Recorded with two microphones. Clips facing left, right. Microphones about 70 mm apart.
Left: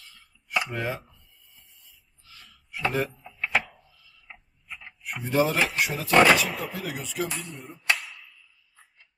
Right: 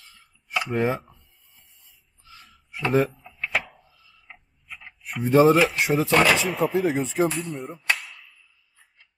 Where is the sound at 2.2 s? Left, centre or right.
Right.